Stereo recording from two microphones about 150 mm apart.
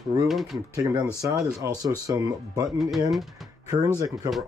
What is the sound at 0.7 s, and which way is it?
Speech, 25° right (ahead or behind).